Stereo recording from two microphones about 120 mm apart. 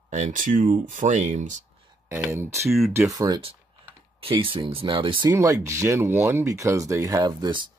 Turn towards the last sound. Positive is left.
turn(degrees=-35)  # may be behind; listen again after turning